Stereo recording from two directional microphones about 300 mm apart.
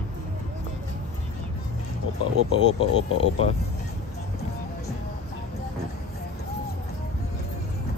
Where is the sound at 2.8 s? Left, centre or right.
Centre.